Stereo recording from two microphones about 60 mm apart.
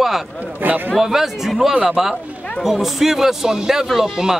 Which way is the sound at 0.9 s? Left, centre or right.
Centre.